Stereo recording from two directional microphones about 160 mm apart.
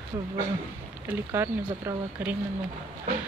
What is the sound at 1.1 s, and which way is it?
Speech, 15° right (ahead or behind).